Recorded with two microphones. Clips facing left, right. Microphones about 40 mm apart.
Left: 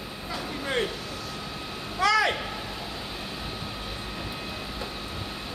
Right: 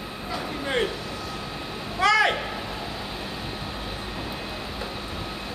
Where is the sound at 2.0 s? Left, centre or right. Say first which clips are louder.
Right 3 dB; right.